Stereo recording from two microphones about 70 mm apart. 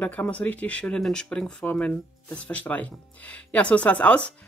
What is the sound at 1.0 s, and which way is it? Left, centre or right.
Speech, centre.